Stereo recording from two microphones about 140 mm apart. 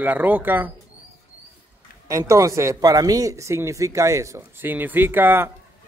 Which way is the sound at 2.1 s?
20° right (ahead or behind).